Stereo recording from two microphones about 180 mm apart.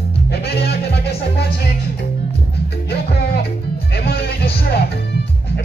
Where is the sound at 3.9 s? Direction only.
60° left (ahead or behind).